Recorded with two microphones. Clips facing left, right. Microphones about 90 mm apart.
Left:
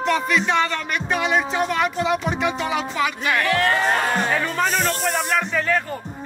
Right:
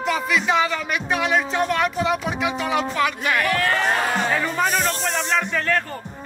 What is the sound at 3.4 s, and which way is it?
Speech, 30° left (ahead or behind).